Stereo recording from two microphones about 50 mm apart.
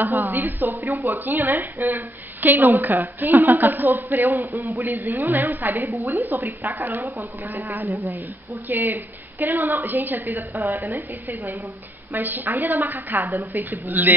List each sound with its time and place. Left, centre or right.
0.0 s a woman's voice: right